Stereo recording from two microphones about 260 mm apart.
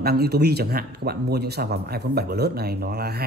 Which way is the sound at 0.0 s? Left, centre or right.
Right.